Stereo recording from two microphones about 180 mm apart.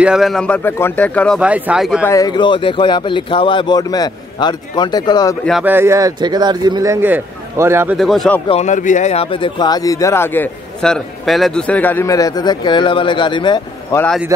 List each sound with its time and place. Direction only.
0.0 s speech: centre (ahead or behind)
1.4 s speech: 5° right (ahead or behind)
2.0 s speech: 20° left (ahead or behind)
5.6 s speech: 10° right (ahead or behind)
8.0 s speech: centre (ahead or behind)
8.5 s speech: 40° left (ahead or behind)